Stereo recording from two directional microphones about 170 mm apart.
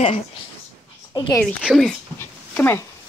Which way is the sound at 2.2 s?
15° left (ahead or behind).